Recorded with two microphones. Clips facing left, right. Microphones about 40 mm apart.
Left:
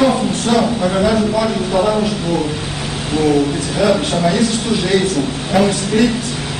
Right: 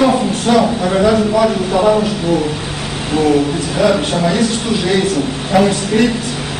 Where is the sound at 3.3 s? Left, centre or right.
Centre.